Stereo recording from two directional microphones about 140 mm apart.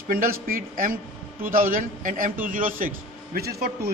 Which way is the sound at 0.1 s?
90° right.